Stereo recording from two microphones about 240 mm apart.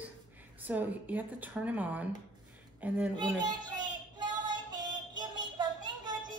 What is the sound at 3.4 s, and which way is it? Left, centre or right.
Music, centre.